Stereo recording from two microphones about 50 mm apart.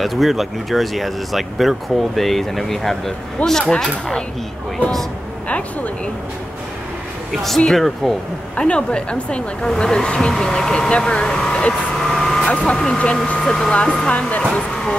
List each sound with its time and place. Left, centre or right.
0.0 s speech: centre
7.7 s speech: centre
8.5 s speech: centre
11.4 s vehicle: centre
13.0 s speech: left